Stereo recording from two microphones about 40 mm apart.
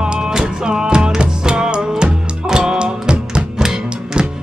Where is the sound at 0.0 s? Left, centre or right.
Centre.